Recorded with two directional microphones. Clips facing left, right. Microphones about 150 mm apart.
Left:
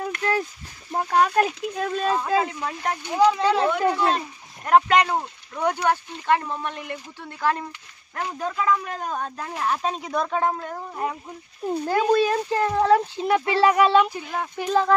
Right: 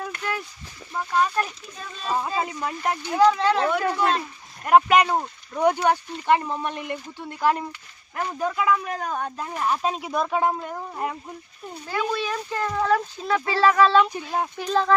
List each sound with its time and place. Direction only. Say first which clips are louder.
0.0 s a sound: left 5 dB; 30° left (ahead or behind)
0.9 s speech: left 4 dB; 55° left (ahead or behind)
2.2 s speech: left 4 dB; 10° right (ahead or behind)
3.2 s speech: even; 10° left (ahead or behind)
4.6 s speech: right 1 dB; 10° right (ahead or behind)
8.6 s speech: right 1 dB; 5° right (ahead or behind)
11.8 s a child's voice: left 7 dB; 45° left (ahead or behind); by 15.0 s 10° left (ahead or behind)